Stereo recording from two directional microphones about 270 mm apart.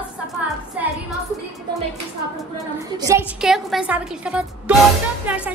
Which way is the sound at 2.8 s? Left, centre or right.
Centre.